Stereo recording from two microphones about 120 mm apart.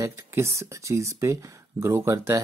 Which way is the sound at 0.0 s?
20° right (ahead or behind).